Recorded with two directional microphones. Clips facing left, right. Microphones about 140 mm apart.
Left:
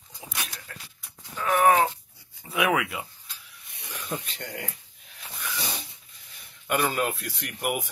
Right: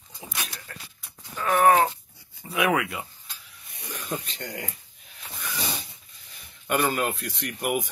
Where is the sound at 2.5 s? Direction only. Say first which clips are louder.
Right 1 dB; 5° left (ahead or behind).